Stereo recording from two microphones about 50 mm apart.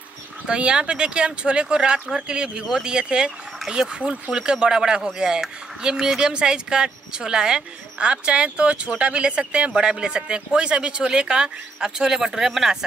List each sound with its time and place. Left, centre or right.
0.5 s speech: centre
3.3 s a sound: centre
3.7 s speech: centre